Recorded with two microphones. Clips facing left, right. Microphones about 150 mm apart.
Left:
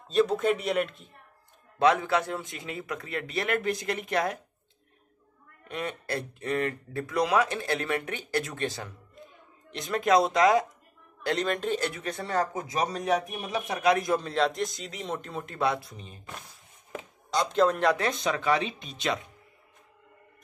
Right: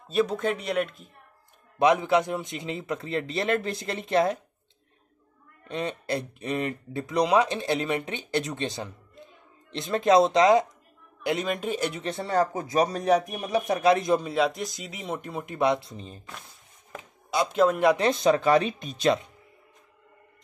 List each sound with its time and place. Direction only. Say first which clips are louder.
0.1 s speech: left 1 dB; centre (ahead or behind)
1.8 s a man's voice: right 2 dB; 15° right (ahead or behind)
5.7 s a man's voice: right 4 dB; 25° right (ahead or behind)
11.2 s speech: even; 10° right (ahead or behind)
12.0 s a man's voice: right 4 dB; 25° right (ahead or behind)
17.3 s speech: right 2 dB; 5° right (ahead or behind)
18.0 s speech: right 6 dB; 35° right (ahead or behind)